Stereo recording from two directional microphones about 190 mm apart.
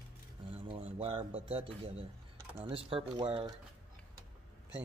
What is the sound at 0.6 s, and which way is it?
Speech, 30° right (ahead or behind).